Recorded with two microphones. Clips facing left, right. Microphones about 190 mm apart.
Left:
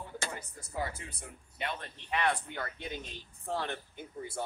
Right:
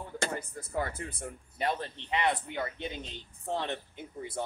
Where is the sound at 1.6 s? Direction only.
35° right (ahead or behind).